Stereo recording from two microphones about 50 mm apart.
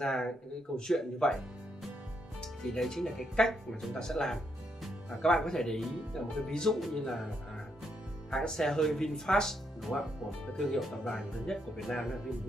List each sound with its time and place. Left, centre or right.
0.0 s speech: centre
2.6 s speech: centre
8.3 s speech: centre
9.9 s speech: left
10.5 s speech: centre